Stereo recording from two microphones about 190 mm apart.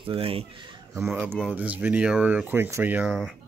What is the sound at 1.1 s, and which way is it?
Speech, 10° right (ahead or behind).